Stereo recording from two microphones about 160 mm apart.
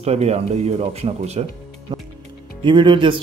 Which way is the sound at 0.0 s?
40° right (ahead or behind).